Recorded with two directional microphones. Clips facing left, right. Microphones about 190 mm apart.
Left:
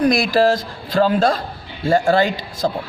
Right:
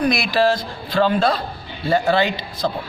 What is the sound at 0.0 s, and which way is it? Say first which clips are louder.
A man's voice: left 3 dB; 40° left (ahead or behind).